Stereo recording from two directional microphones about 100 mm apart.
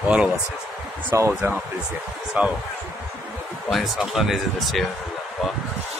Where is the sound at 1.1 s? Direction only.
20° right (ahead or behind).